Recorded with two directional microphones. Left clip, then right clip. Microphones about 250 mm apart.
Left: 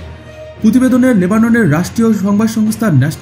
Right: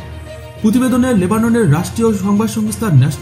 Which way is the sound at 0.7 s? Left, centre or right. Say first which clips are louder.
Left 3 dB; centre.